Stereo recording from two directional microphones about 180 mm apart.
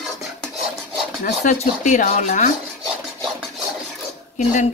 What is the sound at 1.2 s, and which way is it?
Speech, 45° left (ahead or behind).